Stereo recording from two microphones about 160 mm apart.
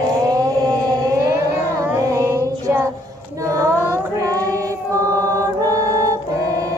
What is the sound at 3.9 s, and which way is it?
Choir, 20° right (ahead or behind).